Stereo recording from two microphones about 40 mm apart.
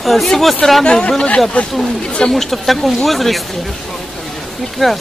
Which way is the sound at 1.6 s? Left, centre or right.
Left.